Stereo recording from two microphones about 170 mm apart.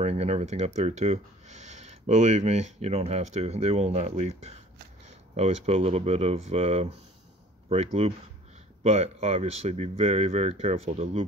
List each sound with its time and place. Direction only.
0.0 s speech: 40° right (ahead or behind)